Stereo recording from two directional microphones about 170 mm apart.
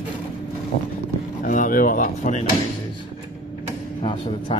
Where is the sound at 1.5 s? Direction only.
50° left (ahead or behind).